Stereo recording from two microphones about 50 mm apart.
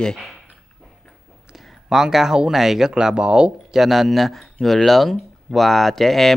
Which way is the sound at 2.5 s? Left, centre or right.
Centre.